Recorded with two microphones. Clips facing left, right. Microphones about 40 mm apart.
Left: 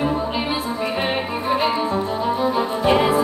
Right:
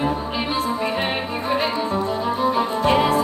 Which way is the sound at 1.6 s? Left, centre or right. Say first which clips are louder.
Left 2 dB; centre.